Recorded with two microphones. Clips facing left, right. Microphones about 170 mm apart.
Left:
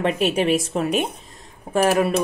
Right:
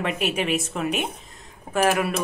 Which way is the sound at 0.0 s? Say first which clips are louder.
Left 5 dB; 35° left (ahead or behind).